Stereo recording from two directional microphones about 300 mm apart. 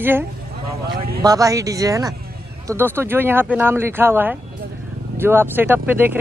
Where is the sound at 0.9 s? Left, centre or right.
Right.